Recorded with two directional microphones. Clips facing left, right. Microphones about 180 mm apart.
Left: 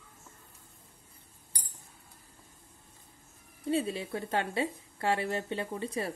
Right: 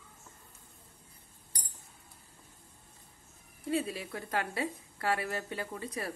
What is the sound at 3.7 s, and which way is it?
A woman's voice, 30° left (ahead or behind).